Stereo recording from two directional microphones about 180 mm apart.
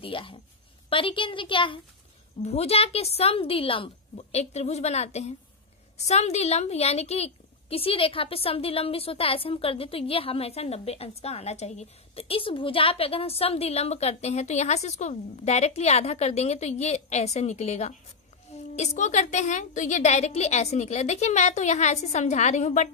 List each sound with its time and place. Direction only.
0.0 s a woman's voice: 30° left (ahead or behind)